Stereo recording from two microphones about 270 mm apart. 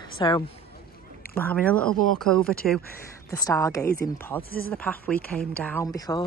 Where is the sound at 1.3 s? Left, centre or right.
Centre.